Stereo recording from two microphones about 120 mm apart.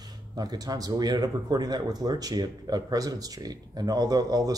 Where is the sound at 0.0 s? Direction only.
35° right (ahead or behind).